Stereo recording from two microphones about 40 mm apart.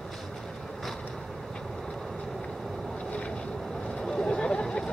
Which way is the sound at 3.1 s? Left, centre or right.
Left.